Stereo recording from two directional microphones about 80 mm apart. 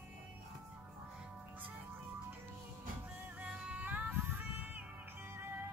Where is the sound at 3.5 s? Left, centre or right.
Centre.